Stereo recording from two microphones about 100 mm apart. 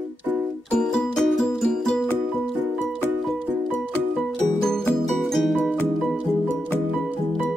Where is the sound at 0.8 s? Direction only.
5° left (ahead or behind).